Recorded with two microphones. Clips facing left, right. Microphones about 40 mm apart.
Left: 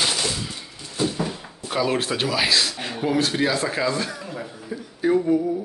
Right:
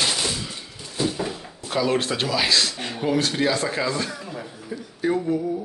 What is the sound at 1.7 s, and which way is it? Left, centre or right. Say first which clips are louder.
Speech: even; centre.